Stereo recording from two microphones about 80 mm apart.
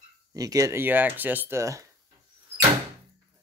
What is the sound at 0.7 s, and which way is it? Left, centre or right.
Speech, right.